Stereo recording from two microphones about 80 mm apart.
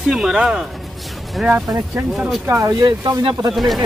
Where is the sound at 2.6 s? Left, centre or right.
Right.